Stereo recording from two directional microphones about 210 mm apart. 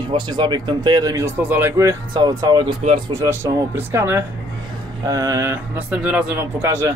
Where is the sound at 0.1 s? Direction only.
20° right (ahead or behind).